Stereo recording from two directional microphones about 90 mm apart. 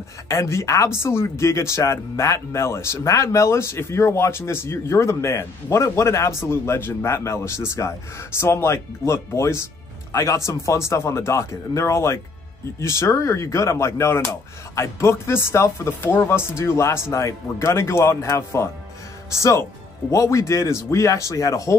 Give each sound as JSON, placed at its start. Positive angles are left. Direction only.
{"t": 0.3, "sound": "speech", "side_deg": 35}